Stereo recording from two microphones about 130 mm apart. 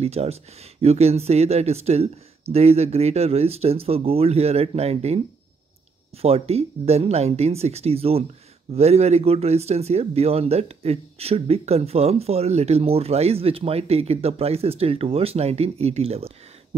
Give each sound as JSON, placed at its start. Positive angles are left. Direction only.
{"t": 0.0, "sound": "speech", "side_deg": -50}
{"t": 6.2, "sound": "speech", "side_deg": -50}